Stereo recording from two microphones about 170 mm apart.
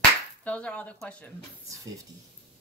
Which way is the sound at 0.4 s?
5° left (ahead or behind).